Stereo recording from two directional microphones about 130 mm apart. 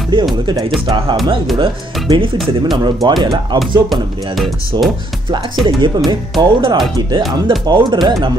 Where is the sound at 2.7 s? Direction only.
35° right (ahead or behind).